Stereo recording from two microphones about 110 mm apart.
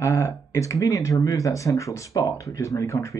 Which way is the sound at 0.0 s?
25° left (ahead or behind).